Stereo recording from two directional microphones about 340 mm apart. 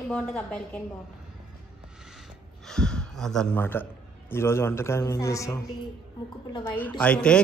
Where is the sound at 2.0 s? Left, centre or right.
Centre.